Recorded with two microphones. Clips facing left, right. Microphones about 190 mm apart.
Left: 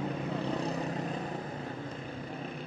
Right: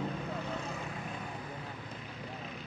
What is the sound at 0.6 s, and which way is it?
Vehicle, 40° left (ahead or behind).